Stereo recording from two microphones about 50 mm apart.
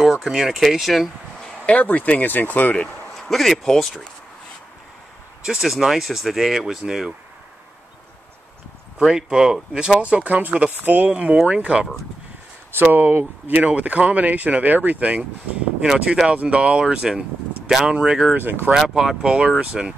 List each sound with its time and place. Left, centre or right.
0.0 s speech: centre
1.7 s speech: left
3.2 s speech: centre
5.4 s speech: centre
9.0 s speech: centre
9.9 s speech: right
11.1 s speech: right
12.9 s speech: right
13.5 s speech: right
15.8 s speech: centre
16.3 s speech: right
18.3 s speech: right
18.7 s speech: centre